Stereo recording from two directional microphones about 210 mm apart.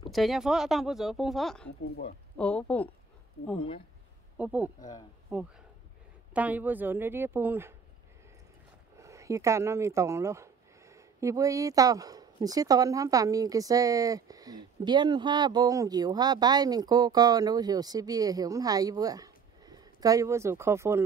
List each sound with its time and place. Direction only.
0.1 s speech: centre (ahead or behind)
4.4 s a woman's voice: 5° right (ahead or behind)
8.9 s speech: 15° right (ahead or behind)